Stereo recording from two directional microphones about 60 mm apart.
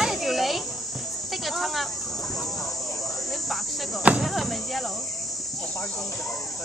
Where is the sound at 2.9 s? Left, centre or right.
Left.